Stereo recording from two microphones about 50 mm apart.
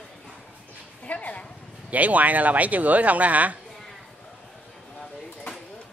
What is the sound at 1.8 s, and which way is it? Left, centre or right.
Speech, right.